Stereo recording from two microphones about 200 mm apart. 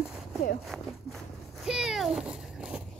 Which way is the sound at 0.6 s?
Centre (ahead or behind).